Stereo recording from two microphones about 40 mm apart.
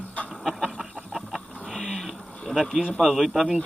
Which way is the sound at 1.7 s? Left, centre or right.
Centre.